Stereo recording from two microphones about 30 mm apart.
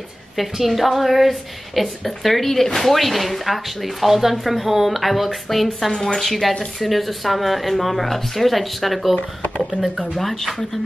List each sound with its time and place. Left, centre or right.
0.4 s speech: centre
10.1 s speech: centre